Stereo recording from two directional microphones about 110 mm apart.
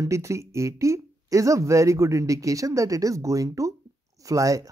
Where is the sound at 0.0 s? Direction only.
25° right (ahead or behind).